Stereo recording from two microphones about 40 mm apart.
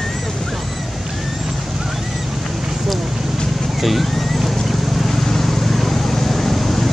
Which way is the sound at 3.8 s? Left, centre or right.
Centre.